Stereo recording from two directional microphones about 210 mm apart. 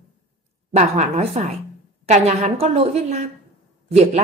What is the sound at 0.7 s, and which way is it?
A woman's voice, 30° right (ahead or behind).